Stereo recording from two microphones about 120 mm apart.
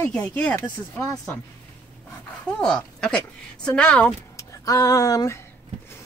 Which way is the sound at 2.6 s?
5° left (ahead or behind).